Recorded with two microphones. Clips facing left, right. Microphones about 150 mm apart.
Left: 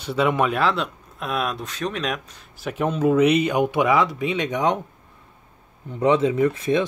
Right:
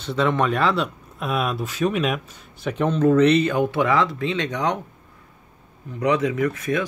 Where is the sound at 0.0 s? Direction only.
10° left (ahead or behind).